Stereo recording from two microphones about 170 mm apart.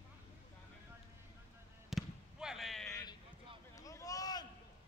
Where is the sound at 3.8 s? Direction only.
20° left (ahead or behind).